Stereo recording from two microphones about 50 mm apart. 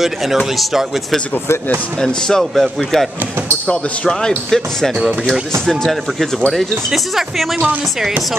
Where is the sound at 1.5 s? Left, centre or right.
Left.